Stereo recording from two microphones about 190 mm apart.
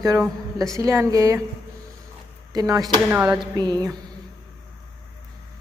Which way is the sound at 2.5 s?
20° right (ahead or behind).